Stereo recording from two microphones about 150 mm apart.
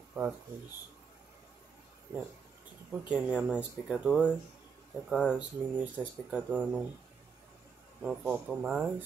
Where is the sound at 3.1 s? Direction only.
5° right (ahead or behind).